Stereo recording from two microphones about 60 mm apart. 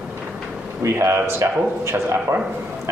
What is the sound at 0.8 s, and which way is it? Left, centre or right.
Speech, right.